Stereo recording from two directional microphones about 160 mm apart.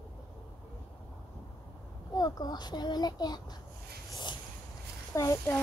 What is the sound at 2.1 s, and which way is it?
A child's voice, 25° left (ahead or behind).